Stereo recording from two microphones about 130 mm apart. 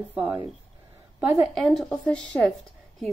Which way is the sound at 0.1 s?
10° right (ahead or behind).